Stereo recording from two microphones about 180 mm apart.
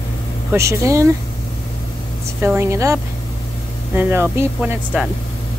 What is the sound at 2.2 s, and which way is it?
Speech, 15° right (ahead or behind).